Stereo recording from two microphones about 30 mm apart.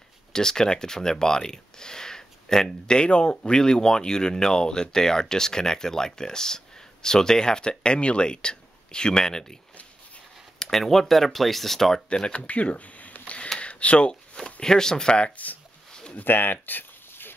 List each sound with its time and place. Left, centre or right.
0.3 s speech: left
3.0 s speech: left
10.6 s speech: centre
12.1 s speech: left
12.4 s speech: left
13.6 s a sound: left
14.3 s speech: left
15.3 s speech: left
16.2 s speech: left